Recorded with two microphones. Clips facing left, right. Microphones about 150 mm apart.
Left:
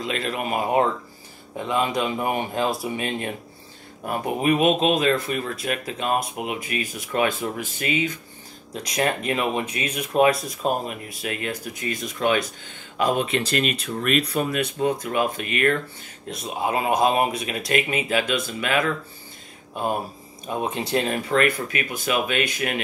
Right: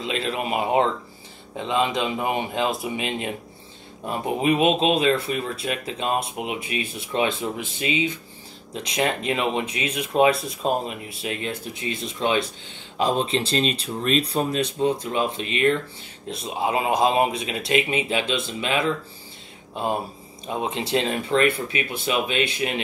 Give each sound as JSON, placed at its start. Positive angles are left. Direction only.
{"t": 0.2, "sound": "speech", "side_deg": -20}